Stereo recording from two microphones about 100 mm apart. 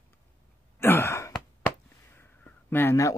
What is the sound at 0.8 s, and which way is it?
Sigh, 25° left (ahead or behind).